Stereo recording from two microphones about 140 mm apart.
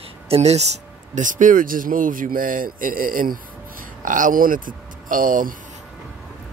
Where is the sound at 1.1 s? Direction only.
65° right (ahead or behind).